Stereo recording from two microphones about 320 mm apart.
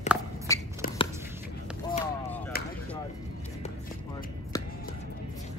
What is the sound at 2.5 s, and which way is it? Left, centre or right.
Chop, left.